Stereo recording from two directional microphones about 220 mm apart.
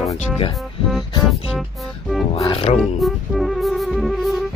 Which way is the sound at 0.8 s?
Centre (ahead or behind).